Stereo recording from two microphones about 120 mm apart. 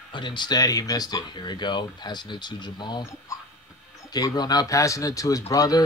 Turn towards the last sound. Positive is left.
turn(degrees=30)  # may be behind; listen again after turning